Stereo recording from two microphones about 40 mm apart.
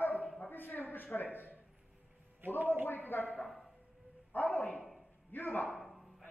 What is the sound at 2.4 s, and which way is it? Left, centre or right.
Speech, right.